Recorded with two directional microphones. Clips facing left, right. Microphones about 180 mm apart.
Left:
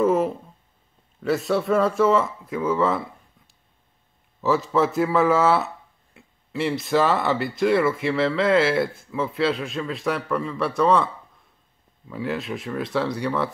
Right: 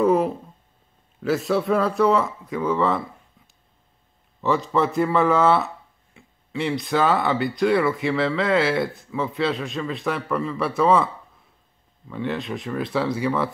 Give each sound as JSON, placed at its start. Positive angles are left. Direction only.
{"t": 0.0, "sound": "a sound", "side_deg": 0}
{"t": 1.2, "sound": "speech", "side_deg": 0}
{"t": 4.4, "sound": "speech", "side_deg": 0}
{"t": 12.1, "sound": "speech", "side_deg": 0}